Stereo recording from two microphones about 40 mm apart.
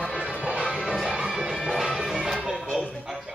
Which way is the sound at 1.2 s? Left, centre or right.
Centre.